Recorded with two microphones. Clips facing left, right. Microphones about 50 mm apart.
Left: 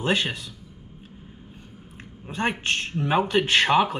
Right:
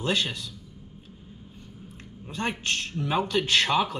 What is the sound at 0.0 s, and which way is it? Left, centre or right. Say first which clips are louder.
Speech: left 3 dB; left.